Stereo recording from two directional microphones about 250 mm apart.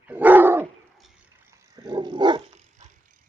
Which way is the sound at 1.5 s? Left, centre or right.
Centre.